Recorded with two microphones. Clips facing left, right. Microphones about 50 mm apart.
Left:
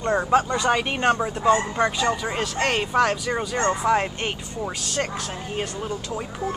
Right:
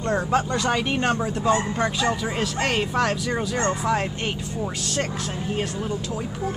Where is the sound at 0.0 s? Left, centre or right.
Centre.